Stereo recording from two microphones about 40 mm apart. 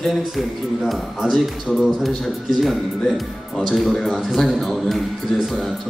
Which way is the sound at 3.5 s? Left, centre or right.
Centre.